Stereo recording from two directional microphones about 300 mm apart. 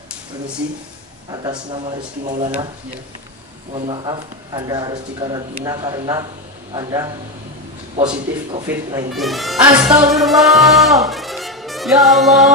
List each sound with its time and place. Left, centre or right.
1.3 s speech: centre
3.7 s a man's voice: centre
9.1 s speech: centre
10.0 s music: centre